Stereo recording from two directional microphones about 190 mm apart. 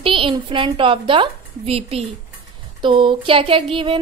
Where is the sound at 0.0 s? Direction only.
25° right (ahead or behind).